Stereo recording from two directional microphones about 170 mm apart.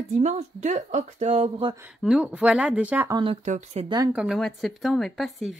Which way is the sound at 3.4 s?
40° right (ahead or behind).